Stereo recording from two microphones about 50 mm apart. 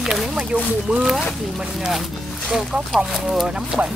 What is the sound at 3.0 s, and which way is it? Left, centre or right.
Speech, centre.